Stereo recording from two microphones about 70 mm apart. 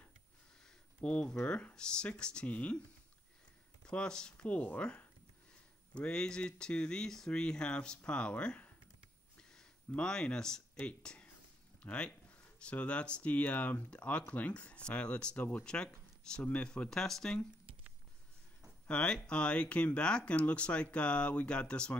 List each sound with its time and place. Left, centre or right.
1.0 s speech: centre
3.9 s speech: centre
16.6 s speech: centre
18.9 s speech: centre